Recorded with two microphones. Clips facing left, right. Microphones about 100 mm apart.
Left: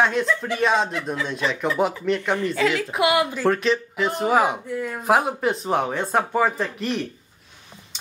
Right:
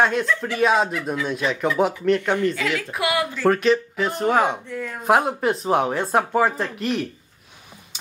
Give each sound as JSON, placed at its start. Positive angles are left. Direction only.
{"t": 0.0, "sound": "speech", "side_deg": 0}
{"t": 2.5, "sound": "a woman's voice", "side_deg": 30}
{"t": 3.4, "sound": "speech", "side_deg": 0}